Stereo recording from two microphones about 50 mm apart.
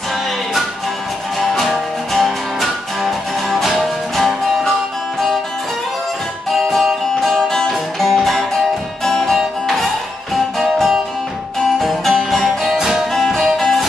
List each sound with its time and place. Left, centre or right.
1.4 s music: centre
6.7 s music: centre
13.1 s music: centre